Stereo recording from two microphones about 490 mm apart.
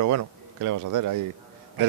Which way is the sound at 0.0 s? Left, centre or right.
Right.